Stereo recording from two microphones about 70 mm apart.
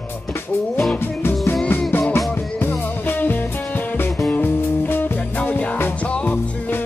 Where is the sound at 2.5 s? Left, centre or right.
Left.